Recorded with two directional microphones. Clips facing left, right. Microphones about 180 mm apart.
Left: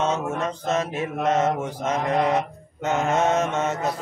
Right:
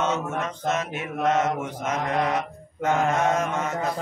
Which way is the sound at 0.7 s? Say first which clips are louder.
Left 3 dB; 30° left (ahead or behind).